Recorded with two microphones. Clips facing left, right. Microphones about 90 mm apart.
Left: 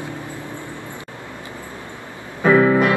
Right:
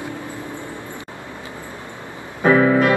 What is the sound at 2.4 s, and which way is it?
Keyboard, 20° right (ahead or behind).